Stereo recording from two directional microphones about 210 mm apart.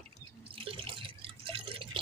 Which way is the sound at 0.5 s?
25° right (ahead or behind).